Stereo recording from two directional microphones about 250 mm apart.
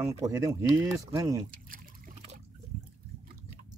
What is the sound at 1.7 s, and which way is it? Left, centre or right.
Trickle, right.